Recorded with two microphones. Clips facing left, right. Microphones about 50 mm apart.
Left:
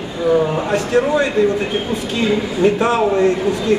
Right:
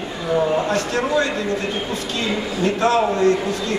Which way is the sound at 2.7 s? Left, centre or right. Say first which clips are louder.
Left 2 dB; centre.